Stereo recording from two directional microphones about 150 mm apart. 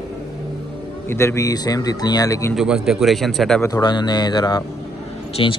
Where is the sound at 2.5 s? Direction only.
5° right (ahead or behind).